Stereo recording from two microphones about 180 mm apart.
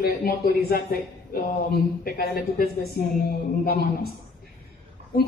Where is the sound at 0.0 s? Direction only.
60° left (ahead or behind).